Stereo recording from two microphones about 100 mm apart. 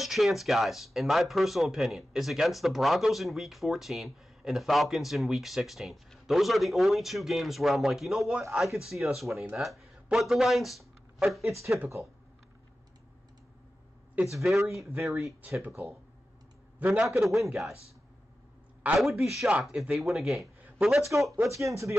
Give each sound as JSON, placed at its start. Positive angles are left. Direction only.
{"t": 0.0, "sound": "speech", "side_deg": 0}
{"t": 14.2, "sound": "speech", "side_deg": 0}
{"t": 15.6, "sound": "speech", "side_deg": -15}
{"t": 16.9, "sound": "speech", "side_deg": -5}
{"t": 18.9, "sound": "speech", "side_deg": 0}
{"t": 21.4, "sound": "speech", "side_deg": -30}